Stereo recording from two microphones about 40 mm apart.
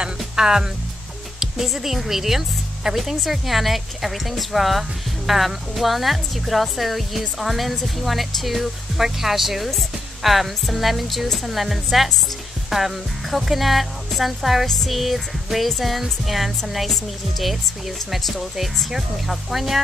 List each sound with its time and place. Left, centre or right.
0.0 s music: centre
1.4 s a woman's voice: centre